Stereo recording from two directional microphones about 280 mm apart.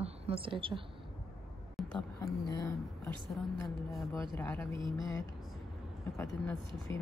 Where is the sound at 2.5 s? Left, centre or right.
Centre.